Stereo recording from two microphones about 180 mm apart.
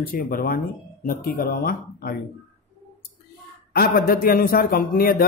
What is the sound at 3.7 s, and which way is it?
A man's voice, 55° left (ahead or behind).